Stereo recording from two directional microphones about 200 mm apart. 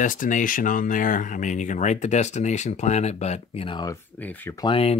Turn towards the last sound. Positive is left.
turn(degrees=30)  # may be behind; listen again after turning